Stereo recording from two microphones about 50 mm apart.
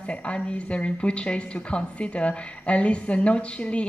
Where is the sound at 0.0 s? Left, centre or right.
Left.